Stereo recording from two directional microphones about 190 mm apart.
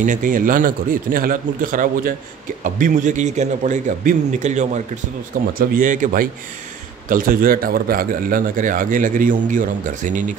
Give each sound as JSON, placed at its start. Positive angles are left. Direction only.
{"t": 0.0, "sound": "a man's voice", "side_deg": -45}